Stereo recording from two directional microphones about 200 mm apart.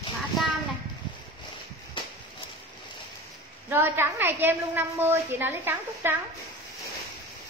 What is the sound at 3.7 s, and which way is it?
A woman's voice, 10° right (ahead or behind).